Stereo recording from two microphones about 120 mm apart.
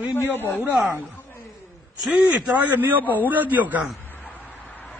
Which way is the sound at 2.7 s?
15° right (ahead or behind).